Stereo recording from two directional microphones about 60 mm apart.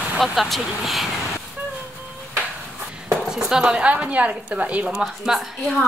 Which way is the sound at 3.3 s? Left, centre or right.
Centre.